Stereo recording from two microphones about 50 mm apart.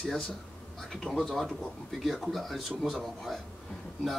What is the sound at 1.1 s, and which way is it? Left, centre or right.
Speech, left.